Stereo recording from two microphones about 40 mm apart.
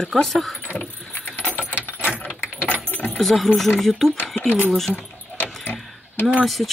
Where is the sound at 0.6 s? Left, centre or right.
Left.